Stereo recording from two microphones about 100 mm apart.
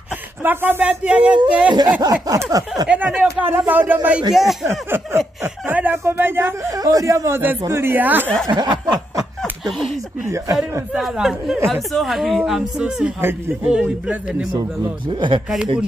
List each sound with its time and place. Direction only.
0.4 s speech: 20° right (ahead or behind)
2.2 s a sound: 35° right (ahead or behind)
3.2 s speech: 15° right (ahead or behind)
4.3 s speech: 5° right (ahead or behind)
4.6 s speech: 25° right (ahead or behind)
6.7 s speech: 35° right (ahead or behind); by 8.3 s 20° right (ahead or behind)
8.5 s snicker: 45° right (ahead or behind)
9.4 s a sound: 5° left (ahead or behind)
10.9 s speech: 5° right (ahead or behind)
15.1 s speech: 55° right (ahead or behind)